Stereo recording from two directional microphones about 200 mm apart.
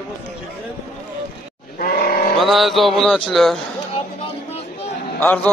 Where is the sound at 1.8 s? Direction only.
45° left (ahead or behind).